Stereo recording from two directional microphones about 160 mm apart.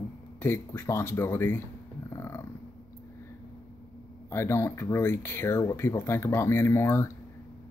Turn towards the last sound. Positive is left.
turn(degrees=15)  # may be behind; listen again after turning